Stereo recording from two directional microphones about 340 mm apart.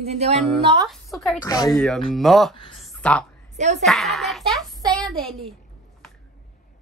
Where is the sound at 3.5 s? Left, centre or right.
Centre.